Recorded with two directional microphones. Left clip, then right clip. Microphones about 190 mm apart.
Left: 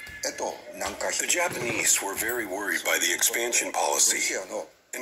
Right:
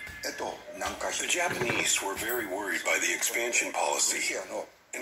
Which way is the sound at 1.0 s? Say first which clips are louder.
Left 3 dB; 45° left (ahead or behind).